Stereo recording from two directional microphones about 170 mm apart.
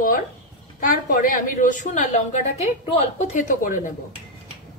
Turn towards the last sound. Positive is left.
turn(degrees=50)  # may be behind; listen again after turning